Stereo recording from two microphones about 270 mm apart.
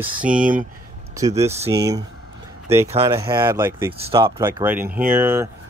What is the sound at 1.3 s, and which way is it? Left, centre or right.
Speech, right.